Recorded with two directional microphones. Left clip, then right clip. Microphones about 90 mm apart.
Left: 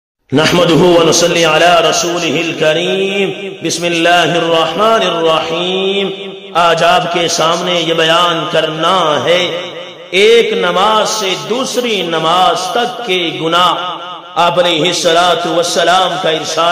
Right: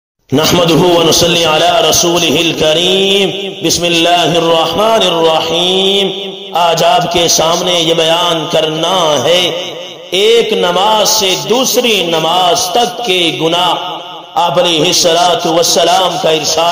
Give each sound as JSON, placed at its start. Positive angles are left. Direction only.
{"t": 0.4, "sound": "a man's voice", "side_deg": -35}